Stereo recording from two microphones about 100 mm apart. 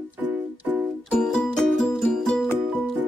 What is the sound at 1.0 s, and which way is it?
Music, 5° left (ahead or behind).